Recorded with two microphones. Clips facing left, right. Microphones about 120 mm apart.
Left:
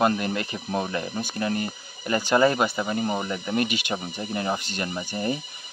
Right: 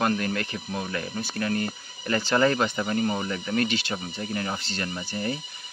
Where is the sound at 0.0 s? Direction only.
20° left (ahead or behind).